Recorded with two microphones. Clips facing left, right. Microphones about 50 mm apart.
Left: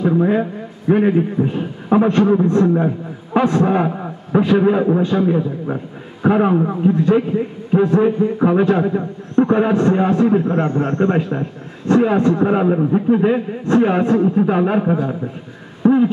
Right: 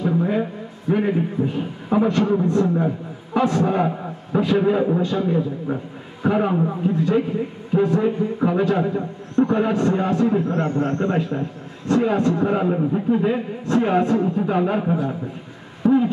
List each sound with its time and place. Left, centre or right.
0.0 s a man's voice: left
8.0 s a man's voice: left
15.8 s a sound: left